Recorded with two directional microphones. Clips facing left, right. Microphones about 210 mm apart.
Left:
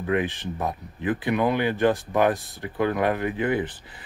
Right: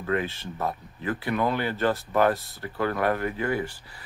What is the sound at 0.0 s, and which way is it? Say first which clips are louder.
Speech: left 3 dB; 15° left (ahead or behind).